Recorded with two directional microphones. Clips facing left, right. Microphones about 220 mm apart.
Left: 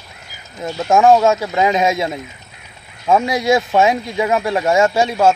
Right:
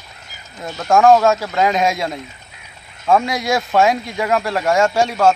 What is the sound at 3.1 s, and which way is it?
Speech, 15° left (ahead or behind).